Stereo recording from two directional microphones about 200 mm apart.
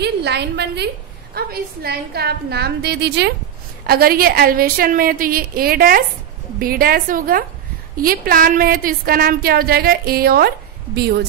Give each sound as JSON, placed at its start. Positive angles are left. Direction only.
{"t": 0.0, "sound": "a woman's voice", "side_deg": -55}